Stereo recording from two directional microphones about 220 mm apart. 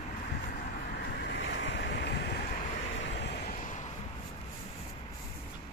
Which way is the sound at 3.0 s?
50° left (ahead or behind).